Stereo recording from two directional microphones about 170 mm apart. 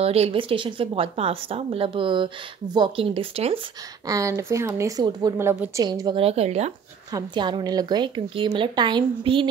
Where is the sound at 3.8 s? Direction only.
20° right (ahead or behind); by 6.7 s 40° right (ahead or behind).